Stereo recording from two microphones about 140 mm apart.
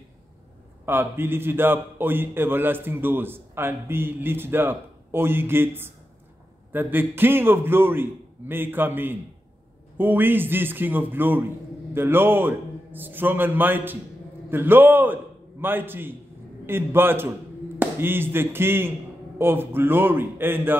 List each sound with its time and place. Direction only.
0.8 s speech: 15° right (ahead or behind)